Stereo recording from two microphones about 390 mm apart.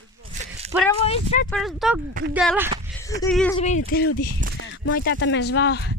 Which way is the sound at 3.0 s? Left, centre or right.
Centre.